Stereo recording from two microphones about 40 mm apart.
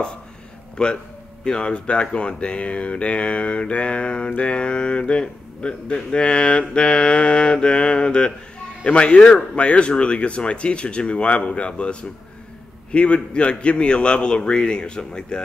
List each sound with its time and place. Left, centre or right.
0.8 s mantra: left